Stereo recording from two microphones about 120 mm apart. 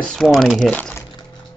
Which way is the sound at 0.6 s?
15° left (ahead or behind).